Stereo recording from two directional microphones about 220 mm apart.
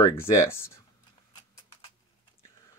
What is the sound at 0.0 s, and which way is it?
Speech, 10° left (ahead or behind).